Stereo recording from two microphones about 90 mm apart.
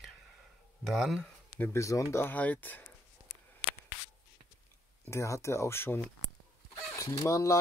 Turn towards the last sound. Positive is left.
turn(degrees=35)  # may be behind; listen again after turning